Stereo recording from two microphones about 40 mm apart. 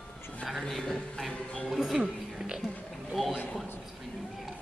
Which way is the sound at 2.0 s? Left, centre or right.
Right.